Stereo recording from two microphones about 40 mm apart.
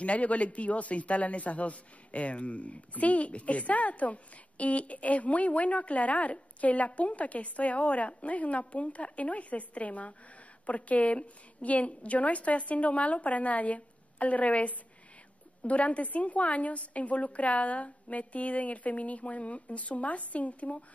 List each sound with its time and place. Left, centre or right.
0.0 s a man's voice: left